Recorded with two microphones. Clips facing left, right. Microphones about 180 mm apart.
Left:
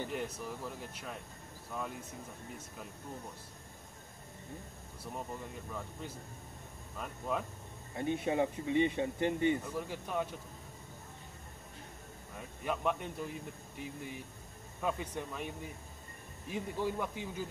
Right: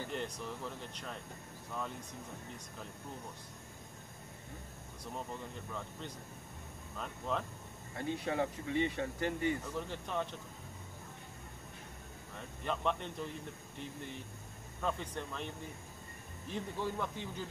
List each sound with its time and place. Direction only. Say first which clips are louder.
0.1 s speech: left 1 dB; 5° left (ahead or behind)
5.7 s speech: left 2 dB; 5° left (ahead or behind)
7.9 s speech: left 4 dB; 20° left (ahead or behind)
9.6 s speech: left 1 dB; 5° left (ahead or behind)
12.4 s speech: left 1 dB; 10° left (ahead or behind)